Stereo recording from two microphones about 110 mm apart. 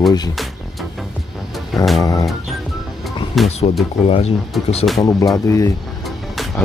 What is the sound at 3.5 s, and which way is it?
Speech, 70° left (ahead or behind).